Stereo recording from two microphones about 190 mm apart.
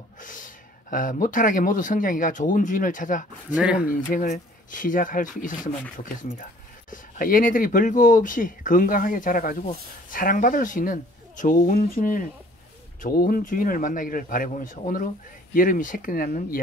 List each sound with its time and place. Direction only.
0.2 s speech: 45° left (ahead or behind)
3.5 s speech: 5° right (ahead or behind)
3.9 s speech: 45° left (ahead or behind)
6.9 s speech: 45° left (ahead or behind)